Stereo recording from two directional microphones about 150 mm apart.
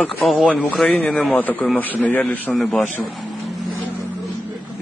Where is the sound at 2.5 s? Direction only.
Centre (ahead or behind).